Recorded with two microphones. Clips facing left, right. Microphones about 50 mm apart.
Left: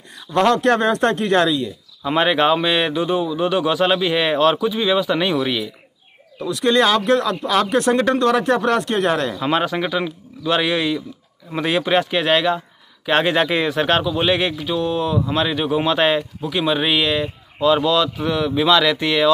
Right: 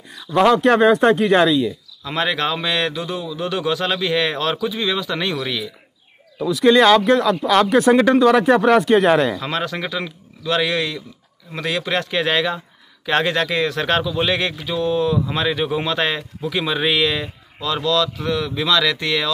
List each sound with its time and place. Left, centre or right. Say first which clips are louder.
0.3 s speech: right 2 dB; centre
2.0 s speech: left 5 dB; centre
3.0 s speech: left 6 dB; left
3.4 s speech: left 2 dB; centre
6.4 s speech: right 3 dB; centre
9.4 s speech: left 4 dB; centre
17.6 s speech: left 4 dB; centre